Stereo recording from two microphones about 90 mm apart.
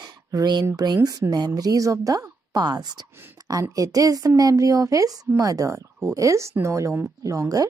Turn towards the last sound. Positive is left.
turn(degrees=-40)  # may be behind; listen again after turning